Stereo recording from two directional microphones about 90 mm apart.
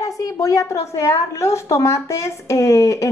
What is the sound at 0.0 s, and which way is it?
A woman's voice, 40° left (ahead or behind).